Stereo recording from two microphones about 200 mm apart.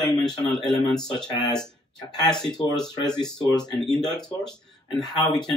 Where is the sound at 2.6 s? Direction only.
20° left (ahead or behind).